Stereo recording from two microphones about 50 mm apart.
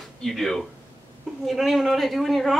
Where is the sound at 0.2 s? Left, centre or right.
Centre.